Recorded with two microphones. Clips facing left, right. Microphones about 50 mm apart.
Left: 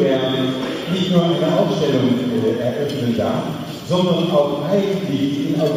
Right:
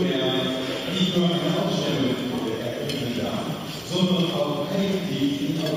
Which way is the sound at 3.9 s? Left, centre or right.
Left.